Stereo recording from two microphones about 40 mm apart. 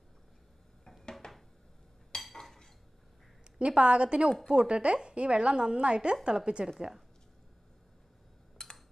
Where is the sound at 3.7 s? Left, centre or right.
Right.